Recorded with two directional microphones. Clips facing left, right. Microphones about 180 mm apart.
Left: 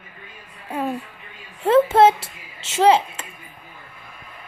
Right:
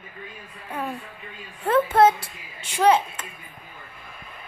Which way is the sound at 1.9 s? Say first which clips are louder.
Left 3 dB; 25° left (ahead or behind).